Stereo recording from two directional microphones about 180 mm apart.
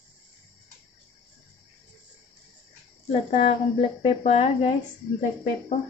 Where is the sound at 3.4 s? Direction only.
30° left (ahead or behind).